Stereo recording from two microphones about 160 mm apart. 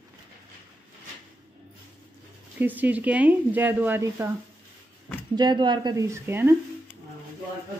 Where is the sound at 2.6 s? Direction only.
10° right (ahead or behind).